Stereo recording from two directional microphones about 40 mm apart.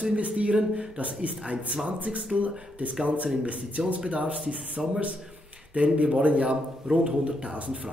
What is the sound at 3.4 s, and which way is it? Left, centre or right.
A man's voice, right.